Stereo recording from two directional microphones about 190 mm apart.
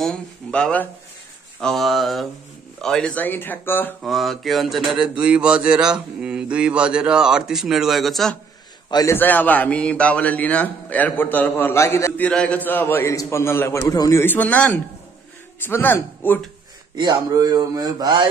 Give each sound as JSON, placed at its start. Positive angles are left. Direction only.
{"t": 0.0, "sound": "a man's voice", "side_deg": 5}
{"t": 4.0, "sound": "speech", "side_deg": 0}
{"t": 8.9, "sound": "a man's voice", "side_deg": 15}
{"t": 16.9, "sound": "speech", "side_deg": -25}